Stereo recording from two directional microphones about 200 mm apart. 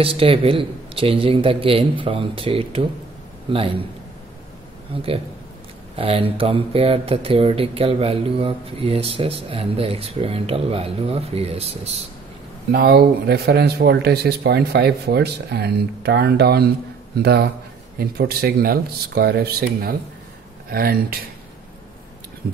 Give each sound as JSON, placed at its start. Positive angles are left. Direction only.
{"t": 0.0, "sound": "a man's voice", "side_deg": -30}
{"t": 5.9, "sound": "speech", "side_deg": -30}
{"t": 12.7, "sound": "speech", "side_deg": -55}